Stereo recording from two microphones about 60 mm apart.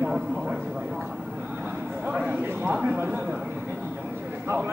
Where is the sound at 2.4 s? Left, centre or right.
Right.